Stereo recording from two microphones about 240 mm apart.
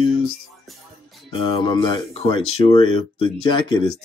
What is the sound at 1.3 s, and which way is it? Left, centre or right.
Speech, left.